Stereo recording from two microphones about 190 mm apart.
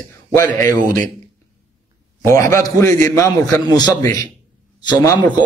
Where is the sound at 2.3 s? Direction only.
15° left (ahead or behind).